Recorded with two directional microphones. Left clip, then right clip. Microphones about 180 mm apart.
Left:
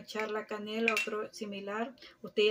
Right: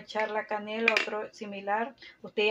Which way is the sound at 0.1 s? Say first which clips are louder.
Right 6 dB; 45° left (ahead or behind).